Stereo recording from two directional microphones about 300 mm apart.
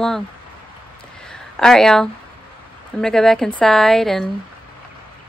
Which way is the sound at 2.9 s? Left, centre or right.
Centre.